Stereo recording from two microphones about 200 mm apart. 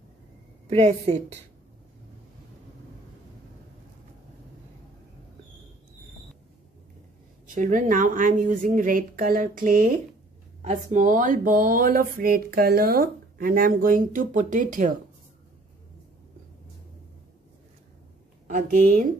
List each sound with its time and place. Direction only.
0.7 s speech: 30° right (ahead or behind)
7.5 s speech: 40° right (ahead or behind)
18.5 s speech: 40° right (ahead or behind)